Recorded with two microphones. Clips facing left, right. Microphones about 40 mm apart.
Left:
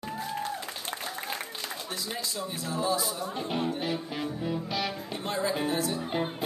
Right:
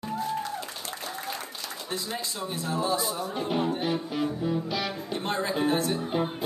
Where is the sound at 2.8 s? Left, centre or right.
Right.